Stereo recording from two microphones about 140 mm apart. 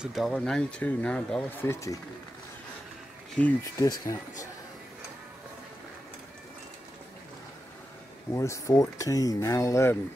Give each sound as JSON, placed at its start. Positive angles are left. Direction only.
{"t": 0.0, "sound": "speech", "side_deg": 0}
{"t": 1.7, "sound": "speech", "side_deg": 20}
{"t": 3.4, "sound": "speech", "side_deg": 10}
{"t": 3.7, "sound": "speech", "side_deg": 25}
{"t": 8.3, "sound": "speech", "side_deg": 20}